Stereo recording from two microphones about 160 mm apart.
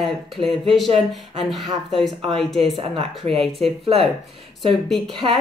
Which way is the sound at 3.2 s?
45° right (ahead or behind).